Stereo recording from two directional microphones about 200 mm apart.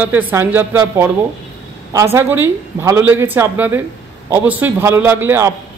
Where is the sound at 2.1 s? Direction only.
10° right (ahead or behind).